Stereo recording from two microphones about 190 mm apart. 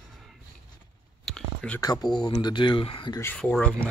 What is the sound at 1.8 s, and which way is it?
Speech, 20° left (ahead or behind).